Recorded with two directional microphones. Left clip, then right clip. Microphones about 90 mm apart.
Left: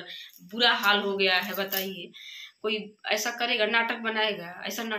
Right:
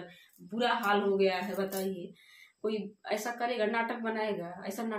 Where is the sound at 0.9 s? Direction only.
30° right (ahead or behind).